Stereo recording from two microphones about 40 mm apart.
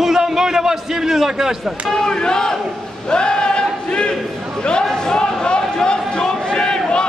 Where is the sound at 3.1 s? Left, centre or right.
Left.